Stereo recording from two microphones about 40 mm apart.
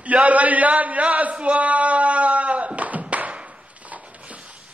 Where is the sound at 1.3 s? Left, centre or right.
Right.